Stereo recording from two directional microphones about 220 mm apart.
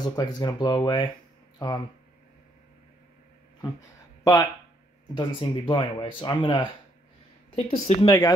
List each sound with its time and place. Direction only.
0.1 s speech: 15° left (ahead or behind)
4.2 s speech: 15° left (ahead or behind)